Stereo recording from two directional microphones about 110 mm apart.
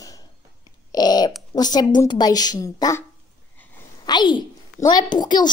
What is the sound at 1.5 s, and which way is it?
A child's voice, 40° left (ahead or behind).